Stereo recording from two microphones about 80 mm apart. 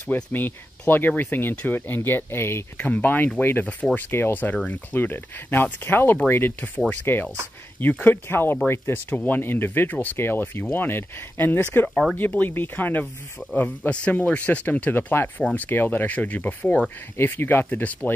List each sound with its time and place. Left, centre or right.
0.1 s speech: left
2.8 s speech: centre
13.0 s speech: centre
13.6 s speech: centre